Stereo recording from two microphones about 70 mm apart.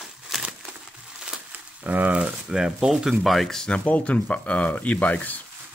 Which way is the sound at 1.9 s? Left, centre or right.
Right.